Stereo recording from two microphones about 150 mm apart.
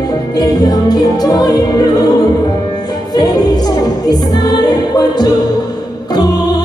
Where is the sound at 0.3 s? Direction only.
25° left (ahead or behind).